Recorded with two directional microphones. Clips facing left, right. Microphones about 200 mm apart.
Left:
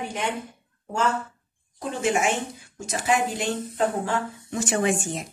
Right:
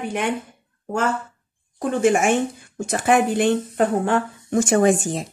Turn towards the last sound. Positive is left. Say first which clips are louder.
# right 5 dB
turn(degrees=-35)  # may be behind; listen again after turning